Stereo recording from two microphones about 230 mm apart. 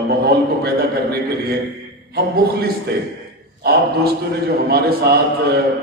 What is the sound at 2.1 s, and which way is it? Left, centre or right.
A man's voice, right.